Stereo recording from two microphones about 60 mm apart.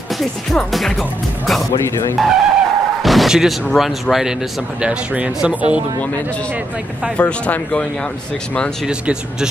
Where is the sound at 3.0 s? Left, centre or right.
Centre.